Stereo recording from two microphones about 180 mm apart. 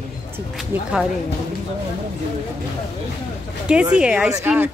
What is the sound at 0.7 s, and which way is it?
Speech, 10° right (ahead or behind).